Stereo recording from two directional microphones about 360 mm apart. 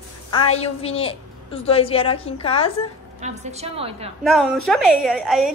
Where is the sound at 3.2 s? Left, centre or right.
Centre.